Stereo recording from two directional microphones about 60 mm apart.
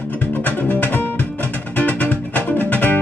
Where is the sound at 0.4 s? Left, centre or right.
Left.